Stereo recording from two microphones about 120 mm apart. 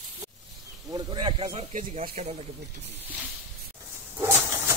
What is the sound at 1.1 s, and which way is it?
Speech, 40° right (ahead or behind).